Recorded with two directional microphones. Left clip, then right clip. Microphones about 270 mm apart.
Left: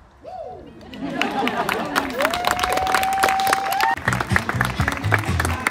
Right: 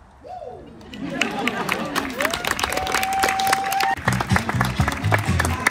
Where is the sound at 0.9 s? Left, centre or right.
Left.